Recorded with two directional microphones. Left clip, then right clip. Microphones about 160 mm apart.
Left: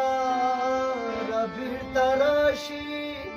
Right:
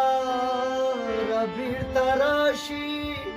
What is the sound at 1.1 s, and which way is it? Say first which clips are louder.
Music: right 2 dB; 20° right (ahead or behind).